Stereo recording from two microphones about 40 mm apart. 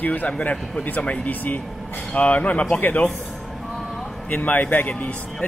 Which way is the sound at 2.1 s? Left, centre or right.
Left.